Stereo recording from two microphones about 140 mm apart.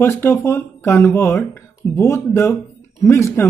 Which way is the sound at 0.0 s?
15° left (ahead or behind).